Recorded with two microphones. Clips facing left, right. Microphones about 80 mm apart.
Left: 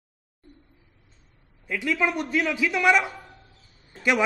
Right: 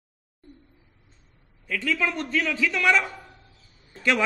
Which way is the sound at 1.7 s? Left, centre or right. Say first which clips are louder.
Left 1 dB; centre.